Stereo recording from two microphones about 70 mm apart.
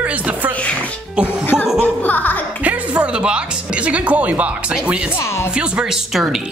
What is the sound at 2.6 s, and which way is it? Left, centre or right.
Speech, right.